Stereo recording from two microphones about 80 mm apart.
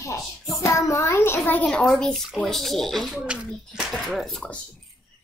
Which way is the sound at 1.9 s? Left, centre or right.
Centre.